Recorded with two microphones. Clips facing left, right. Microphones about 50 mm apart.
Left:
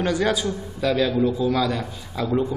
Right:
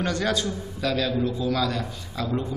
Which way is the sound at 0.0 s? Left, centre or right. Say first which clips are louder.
Left 3 dB; centre.